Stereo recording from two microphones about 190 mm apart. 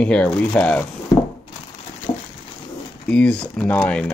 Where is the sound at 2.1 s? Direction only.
25° left (ahead or behind).